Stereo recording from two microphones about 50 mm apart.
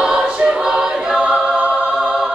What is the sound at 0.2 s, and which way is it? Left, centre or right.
Choir, centre.